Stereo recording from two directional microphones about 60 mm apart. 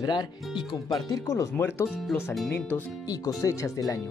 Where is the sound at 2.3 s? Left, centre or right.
Centre.